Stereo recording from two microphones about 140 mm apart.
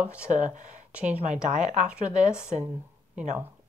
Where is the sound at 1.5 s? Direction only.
55° right (ahead or behind).